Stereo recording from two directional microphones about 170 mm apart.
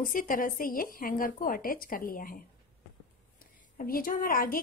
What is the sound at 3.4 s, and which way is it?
A woman's voice, 55° left (ahead or behind).